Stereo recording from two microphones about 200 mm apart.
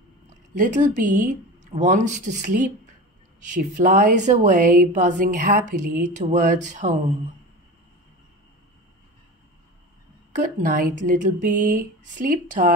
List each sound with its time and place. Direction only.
0.6 s a woman's voice: 40° right (ahead or behind)
10.3 s a woman's voice: 40° right (ahead or behind)